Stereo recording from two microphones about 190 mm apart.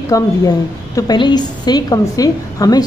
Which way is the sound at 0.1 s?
20° left (ahead or behind).